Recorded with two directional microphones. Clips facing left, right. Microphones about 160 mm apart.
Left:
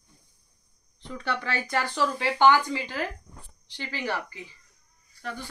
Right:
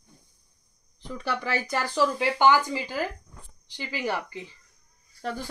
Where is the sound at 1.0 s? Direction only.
10° right (ahead or behind).